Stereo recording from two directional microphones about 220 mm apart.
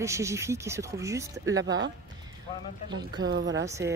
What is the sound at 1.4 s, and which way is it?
Speech, 60° right (ahead or behind).